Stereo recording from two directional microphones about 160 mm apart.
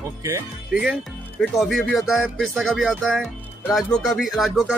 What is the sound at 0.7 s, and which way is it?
Speech, 5° right (ahead or behind).